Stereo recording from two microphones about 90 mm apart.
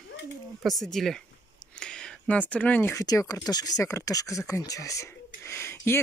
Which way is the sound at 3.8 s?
35° left (ahead or behind).